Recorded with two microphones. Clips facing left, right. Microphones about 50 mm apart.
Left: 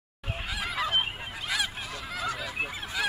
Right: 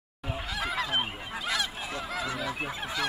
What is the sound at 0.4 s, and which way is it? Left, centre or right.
Goose, centre.